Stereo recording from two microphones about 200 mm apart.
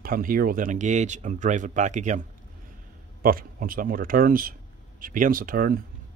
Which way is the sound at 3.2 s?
45° right (ahead or behind).